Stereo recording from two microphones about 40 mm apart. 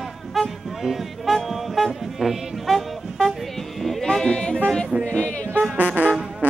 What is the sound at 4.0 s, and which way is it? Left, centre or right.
Music, centre.